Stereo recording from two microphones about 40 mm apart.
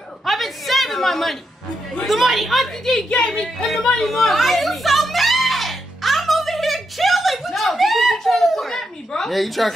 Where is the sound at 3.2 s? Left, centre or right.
Centre.